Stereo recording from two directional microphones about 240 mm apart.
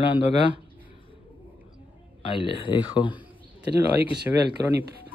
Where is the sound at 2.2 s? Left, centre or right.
Left.